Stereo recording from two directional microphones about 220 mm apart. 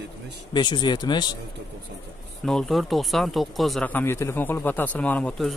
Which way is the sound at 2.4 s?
Centre (ahead or behind).